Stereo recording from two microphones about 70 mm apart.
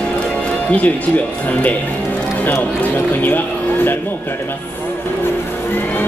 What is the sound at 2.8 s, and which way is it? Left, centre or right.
Speech, left.